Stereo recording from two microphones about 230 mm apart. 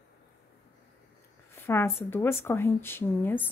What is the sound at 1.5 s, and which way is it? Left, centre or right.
A woman's voice, centre.